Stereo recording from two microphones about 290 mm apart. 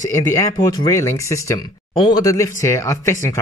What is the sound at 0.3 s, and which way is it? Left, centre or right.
Speech, centre.